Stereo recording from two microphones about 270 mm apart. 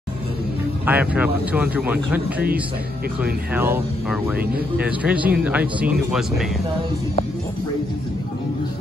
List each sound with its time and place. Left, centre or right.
0.8 s speech: centre